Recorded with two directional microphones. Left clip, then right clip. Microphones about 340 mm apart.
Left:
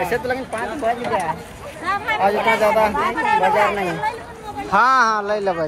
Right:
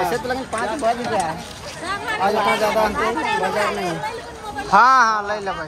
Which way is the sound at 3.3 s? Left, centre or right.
Left.